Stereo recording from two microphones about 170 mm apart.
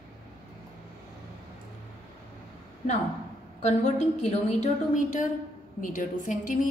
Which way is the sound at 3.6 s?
40° left (ahead or behind).